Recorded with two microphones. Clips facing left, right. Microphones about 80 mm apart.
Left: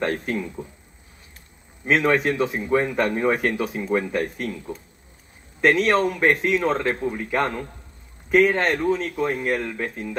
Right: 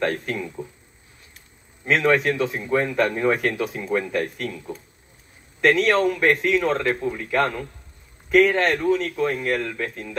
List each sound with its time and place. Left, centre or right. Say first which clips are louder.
0.0 s a man's voice: even; left
2.1 s speech: even; centre
5.7 s a man's voice: right 1 dB; left
9.1 s a man's voice: right 1 dB; centre
9.6 s a man's voice: even; centre